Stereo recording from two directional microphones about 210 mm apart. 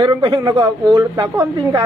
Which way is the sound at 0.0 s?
20° right (ahead or behind).